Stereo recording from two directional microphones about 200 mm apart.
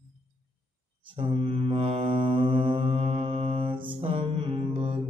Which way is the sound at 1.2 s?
25° right (ahead or behind).